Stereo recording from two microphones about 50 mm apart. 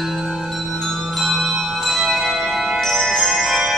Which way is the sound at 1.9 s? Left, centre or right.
Centre.